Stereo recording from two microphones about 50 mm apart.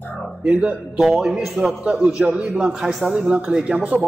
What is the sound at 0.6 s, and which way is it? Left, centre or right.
A man's voice, centre.